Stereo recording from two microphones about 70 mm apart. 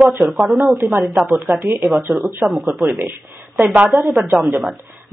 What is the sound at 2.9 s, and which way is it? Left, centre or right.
Speech, right.